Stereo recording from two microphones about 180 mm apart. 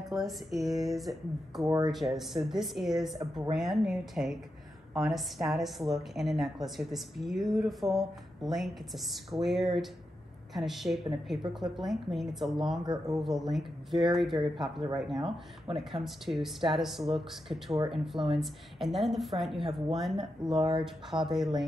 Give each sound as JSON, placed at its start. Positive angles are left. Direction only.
{"t": 0.1, "sound": "a woman's voice", "side_deg": 0}
{"t": 12.8, "sound": "speech", "side_deg": -20}
{"t": 13.2, "sound": "a woman's voice", "side_deg": 0}